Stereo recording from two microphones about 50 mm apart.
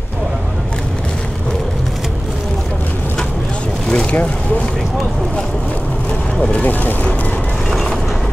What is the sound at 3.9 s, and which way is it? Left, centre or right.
Speech, left.